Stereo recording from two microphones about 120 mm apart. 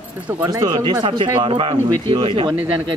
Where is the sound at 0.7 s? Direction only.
45° right (ahead or behind).